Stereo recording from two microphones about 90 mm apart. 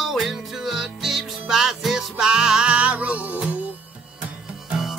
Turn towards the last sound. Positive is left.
turn(degrees=-5)  # may be behind; listen again after turning